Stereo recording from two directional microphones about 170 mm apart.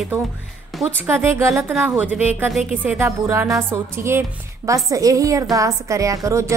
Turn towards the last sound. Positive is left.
turn(degrees=-20)  # may be behind; listen again after turning